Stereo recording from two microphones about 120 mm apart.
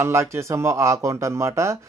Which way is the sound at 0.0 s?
25° right (ahead or behind).